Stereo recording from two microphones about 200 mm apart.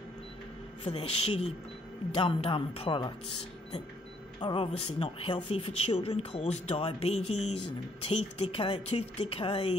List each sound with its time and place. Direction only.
0.8 s a man's voice: 30° left (ahead or behind)
4.4 s a man's voice: 25° left (ahead or behind)
7.2 s speech: 90° left
7.5 s a man's voice: 30° left (ahead or behind)